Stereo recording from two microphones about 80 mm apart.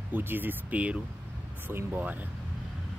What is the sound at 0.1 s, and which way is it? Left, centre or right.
Speech, right.